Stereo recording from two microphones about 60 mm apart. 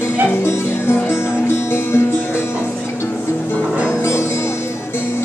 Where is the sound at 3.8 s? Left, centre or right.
Left.